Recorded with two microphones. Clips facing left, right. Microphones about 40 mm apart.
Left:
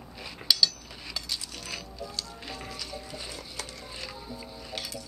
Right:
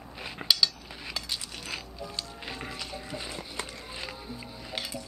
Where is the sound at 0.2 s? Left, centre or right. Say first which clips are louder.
Even; right.